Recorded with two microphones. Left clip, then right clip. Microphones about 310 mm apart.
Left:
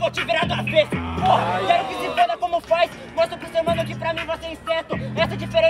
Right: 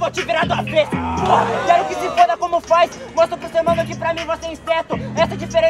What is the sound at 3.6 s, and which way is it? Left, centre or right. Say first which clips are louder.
Speech: right 5 dB; centre.